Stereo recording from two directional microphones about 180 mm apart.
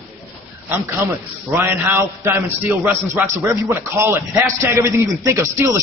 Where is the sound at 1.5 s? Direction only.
10° right (ahead or behind).